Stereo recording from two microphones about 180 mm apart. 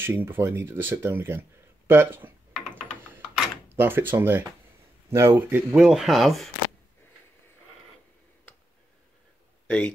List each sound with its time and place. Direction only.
0.0 s speech: 10° right (ahead or behind)
2.7 s typing: 10° right (ahead or behind)
5.1 s speech: 15° right (ahead or behind)
5.8 s speech: centre (ahead or behind)